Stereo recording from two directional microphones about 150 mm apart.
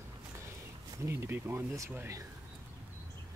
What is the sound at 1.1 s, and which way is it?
Speech, 15° right (ahead or behind).